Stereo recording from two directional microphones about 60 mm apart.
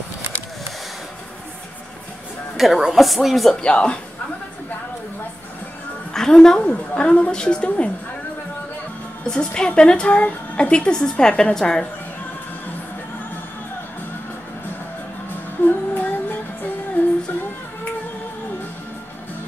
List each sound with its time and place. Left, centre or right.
2.5 s a woman's voice: centre
3.6 s a woman's voice: centre
6.1 s a woman's voice: centre
6.6 s a woman's voice: centre
9.2 s a woman's voice: centre
10.0 s a woman's voice: left
15.6 s music: left